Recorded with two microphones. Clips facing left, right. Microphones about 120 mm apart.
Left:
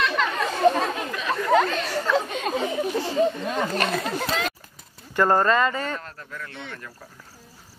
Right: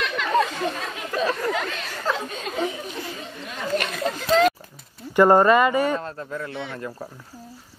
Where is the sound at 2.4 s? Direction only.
40° left (ahead or behind).